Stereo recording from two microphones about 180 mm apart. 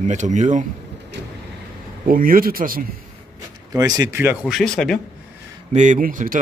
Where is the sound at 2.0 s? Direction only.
50° right (ahead or behind).